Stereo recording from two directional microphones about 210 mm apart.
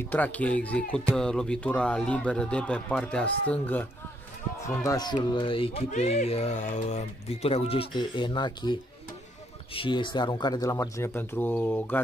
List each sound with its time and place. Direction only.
0.0 s speech: 10° left (ahead or behind)
9.8 s speech: 20° left (ahead or behind)